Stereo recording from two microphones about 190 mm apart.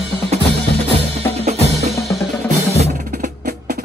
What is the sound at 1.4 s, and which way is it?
Percussion, 35° right (ahead or behind).